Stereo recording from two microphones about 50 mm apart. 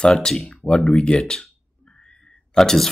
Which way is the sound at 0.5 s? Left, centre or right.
Left.